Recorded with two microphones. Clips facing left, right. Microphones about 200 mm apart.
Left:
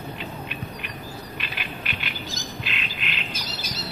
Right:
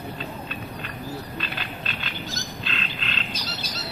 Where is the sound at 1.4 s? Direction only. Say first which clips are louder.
Right 2 dB; 15° left (ahead or behind).